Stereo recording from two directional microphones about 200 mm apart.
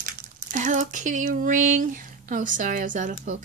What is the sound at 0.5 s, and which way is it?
Speech, 40° right (ahead or behind).